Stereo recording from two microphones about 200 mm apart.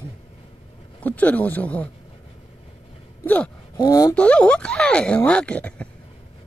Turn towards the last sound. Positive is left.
turn(degrees=5)  # may be behind; listen again after turning